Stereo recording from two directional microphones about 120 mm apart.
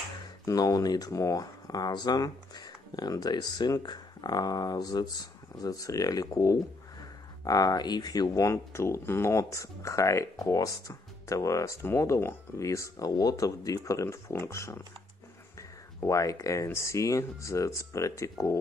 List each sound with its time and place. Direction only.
0.5 s speech: 30° left (ahead or behind)
16.0 s speech: 25° left (ahead or behind)